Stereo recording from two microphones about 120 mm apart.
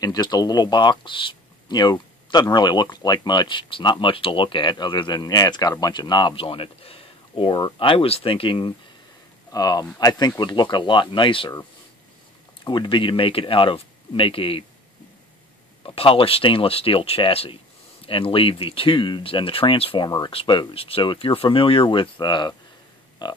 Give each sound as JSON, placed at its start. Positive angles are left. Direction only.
{"t": 0.0, "sound": "speech", "side_deg": 35}
{"t": 9.5, "sound": "speech", "side_deg": 30}
{"t": 12.6, "sound": "speech", "side_deg": 40}
{"t": 15.8, "sound": "speech", "side_deg": 50}